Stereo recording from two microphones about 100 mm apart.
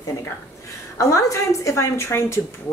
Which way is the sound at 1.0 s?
30° left (ahead or behind).